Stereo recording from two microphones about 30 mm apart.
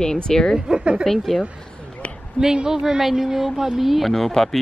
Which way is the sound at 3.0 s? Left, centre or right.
Centre.